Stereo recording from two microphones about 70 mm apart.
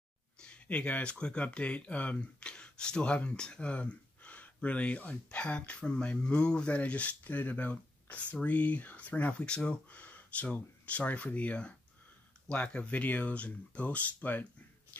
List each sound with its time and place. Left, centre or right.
0.4 s speech: centre